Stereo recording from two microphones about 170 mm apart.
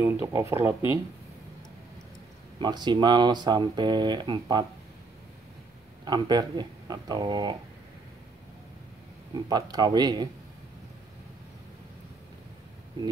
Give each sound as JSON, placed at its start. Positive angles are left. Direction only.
{"t": 0.0, "sound": "speech", "side_deg": -15}
{"t": 2.6, "sound": "speech", "side_deg": -25}
{"t": 6.0, "sound": "speech", "side_deg": -25}
{"t": 9.3, "sound": "speech", "side_deg": -25}